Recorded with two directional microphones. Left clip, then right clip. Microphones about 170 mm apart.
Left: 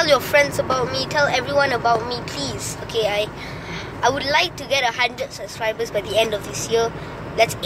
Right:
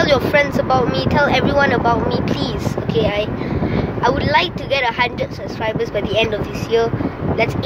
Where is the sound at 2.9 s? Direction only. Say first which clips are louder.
Right 2 dB; 20° left (ahead or behind).